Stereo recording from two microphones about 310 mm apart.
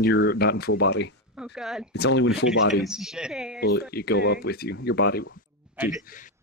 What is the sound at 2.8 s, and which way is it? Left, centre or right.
Speech, centre.